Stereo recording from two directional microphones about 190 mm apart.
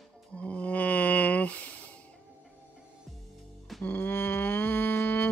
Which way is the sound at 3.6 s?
5° left (ahead or behind).